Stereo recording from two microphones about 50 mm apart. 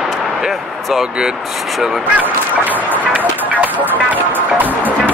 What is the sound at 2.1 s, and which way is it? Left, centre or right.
Music, right.